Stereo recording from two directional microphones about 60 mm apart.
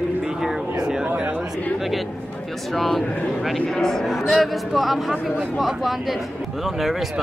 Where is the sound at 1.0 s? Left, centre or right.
Right.